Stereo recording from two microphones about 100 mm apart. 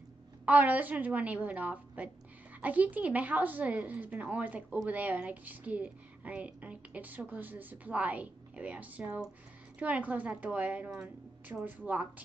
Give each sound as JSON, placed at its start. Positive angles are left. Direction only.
{"t": 0.5, "sound": "a woman's voice", "side_deg": -15}